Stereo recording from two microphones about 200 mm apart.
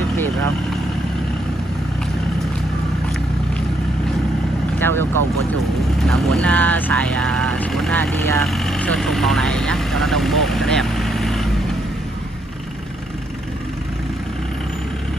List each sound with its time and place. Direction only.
4.7 s vehicle: 10° left (ahead or behind)
6.0 s speech: centre (ahead or behind)